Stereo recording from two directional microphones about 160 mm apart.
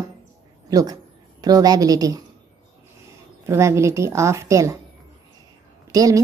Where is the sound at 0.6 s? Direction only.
25° right (ahead or behind).